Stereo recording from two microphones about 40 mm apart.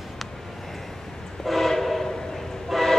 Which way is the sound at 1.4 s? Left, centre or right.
Centre.